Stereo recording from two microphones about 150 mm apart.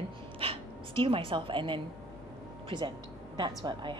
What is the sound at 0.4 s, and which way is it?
A woman's voice, 35° right (ahead or behind).